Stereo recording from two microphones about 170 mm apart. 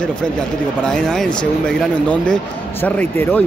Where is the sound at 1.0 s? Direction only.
5° left (ahead or behind).